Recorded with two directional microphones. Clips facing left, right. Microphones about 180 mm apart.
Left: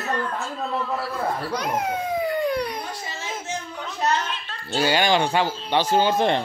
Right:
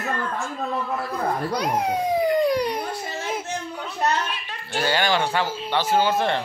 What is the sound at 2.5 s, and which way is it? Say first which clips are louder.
Baby cry: right 3 dB; 30° right (ahead or behind).